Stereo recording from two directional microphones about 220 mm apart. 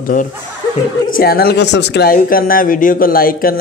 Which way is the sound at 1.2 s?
45° left (ahead or behind).